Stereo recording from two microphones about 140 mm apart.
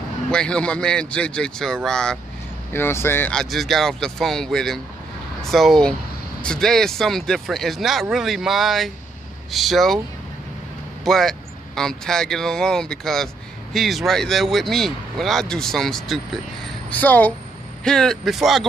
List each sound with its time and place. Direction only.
0.3 s a man's voice: 5° left (ahead or behind)
2.7 s a man's voice: 15° left (ahead or behind)
3.3 s speech: centre (ahead or behind)
11.1 s a man's voice: centre (ahead or behind)